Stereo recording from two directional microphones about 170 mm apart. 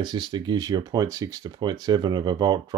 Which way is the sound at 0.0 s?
25° right (ahead or behind).